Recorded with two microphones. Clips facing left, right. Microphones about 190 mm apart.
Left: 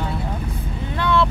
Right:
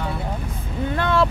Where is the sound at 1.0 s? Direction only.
45° right (ahead or behind).